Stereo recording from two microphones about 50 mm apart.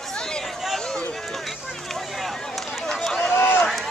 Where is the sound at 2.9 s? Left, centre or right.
Centre.